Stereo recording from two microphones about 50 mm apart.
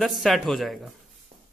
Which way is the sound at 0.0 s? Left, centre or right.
Centre.